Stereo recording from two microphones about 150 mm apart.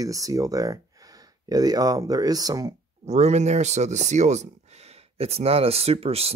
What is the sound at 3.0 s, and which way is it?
Speech, 50° right (ahead or behind).